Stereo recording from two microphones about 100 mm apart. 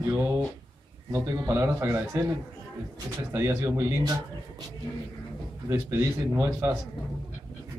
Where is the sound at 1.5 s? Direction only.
25° right (ahead or behind).